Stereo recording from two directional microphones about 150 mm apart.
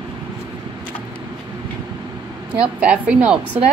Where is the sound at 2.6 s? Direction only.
5° right (ahead or behind).